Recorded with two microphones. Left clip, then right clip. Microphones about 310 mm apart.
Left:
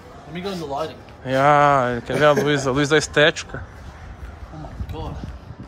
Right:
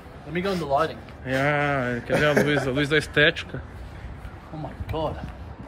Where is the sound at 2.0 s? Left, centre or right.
Centre.